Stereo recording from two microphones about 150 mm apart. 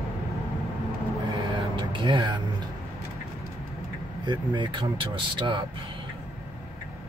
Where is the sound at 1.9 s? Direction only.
30° right (ahead or behind).